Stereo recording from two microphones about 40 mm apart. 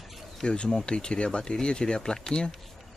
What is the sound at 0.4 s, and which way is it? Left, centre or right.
Speech, left.